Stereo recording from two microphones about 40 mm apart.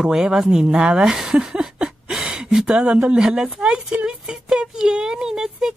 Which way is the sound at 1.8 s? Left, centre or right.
Centre.